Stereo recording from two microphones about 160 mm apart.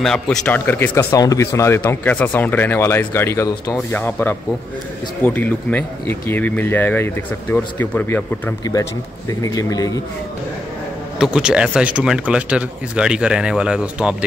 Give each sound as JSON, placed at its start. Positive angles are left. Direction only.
{"t": 0.0, "sound": "speech", "side_deg": 5}
{"t": 0.7, "sound": "speech", "side_deg": 15}
{"t": 9.4, "sound": "a man's voice", "side_deg": 20}
{"t": 11.1, "sound": "speech", "side_deg": -5}